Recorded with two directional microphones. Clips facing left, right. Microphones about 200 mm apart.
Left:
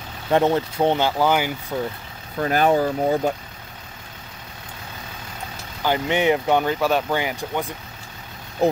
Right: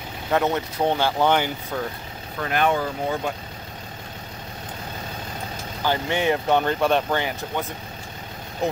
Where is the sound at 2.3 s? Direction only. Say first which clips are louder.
Left 4 dB; 35° left (ahead or behind).